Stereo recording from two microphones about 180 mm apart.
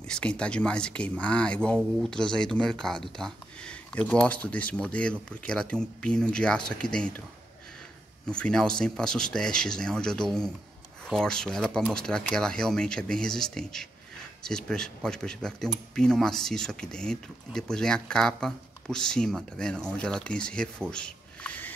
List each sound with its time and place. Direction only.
0.0 s speech: 5° left (ahead or behind)
8.3 s speech: 5° left (ahead or behind)
20.9 s a sound: 5° left (ahead or behind)